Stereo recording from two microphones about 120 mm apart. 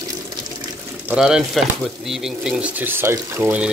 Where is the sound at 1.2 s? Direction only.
5° right (ahead or behind); by 3.6 s 20° right (ahead or behind).